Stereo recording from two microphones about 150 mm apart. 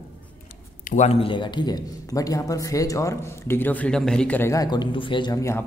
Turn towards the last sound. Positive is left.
turn(degrees=30)  # may be behind; listen again after turning